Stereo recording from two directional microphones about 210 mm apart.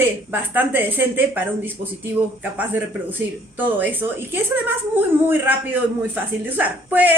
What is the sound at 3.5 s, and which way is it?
Speech, 10° right (ahead or behind).